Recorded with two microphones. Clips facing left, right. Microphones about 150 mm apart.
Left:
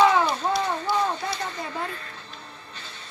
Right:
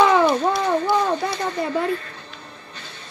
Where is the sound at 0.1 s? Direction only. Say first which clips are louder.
Right 6 dB; 65° right (ahead or behind).